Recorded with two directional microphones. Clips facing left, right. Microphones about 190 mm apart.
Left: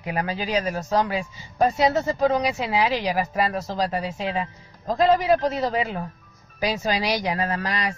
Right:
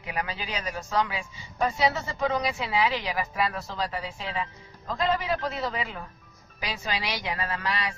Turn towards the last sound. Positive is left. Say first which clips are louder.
# left 4 dB
turn(degrees=40)  # may be behind; listen again after turning